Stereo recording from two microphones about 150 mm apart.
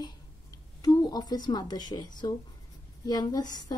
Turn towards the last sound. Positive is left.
turn(degrees=25)  # may be behind; listen again after turning